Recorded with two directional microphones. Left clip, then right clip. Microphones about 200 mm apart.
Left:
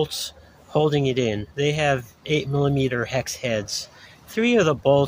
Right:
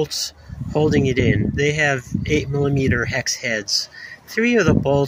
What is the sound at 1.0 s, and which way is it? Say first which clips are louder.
Speech: right 3 dB; 45° left (ahead or behind).